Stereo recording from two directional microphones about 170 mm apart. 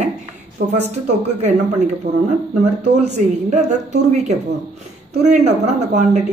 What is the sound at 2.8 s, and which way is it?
A woman's voice, 40° right (ahead or behind).